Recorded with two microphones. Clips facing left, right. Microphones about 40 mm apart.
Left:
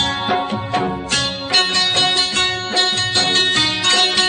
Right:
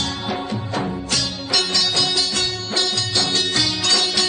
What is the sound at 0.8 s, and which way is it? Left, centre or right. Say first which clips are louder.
Music: left 4 dB; left.